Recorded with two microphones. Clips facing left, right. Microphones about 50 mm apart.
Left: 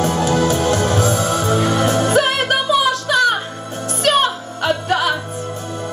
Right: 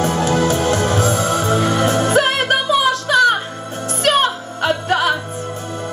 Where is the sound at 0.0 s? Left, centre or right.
Right.